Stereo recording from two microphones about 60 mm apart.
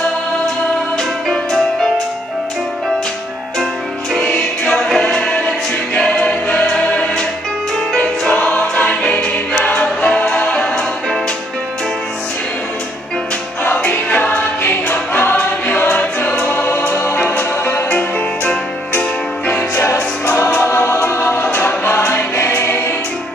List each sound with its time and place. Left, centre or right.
0.9 s music: centre
4.4 s a capella: centre
5.9 s choir: centre
8.7 s choir: centre
9.5 s music: centre
13.7 s music: left
14.6 s choir: left
15.1 s choir: left
17.4 s music: left
20.4 s choir: left
22.0 s music: left